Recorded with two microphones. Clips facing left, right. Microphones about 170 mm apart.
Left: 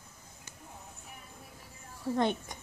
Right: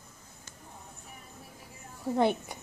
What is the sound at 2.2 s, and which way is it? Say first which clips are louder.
Speech: right 4 dB; 10° right (ahead or behind).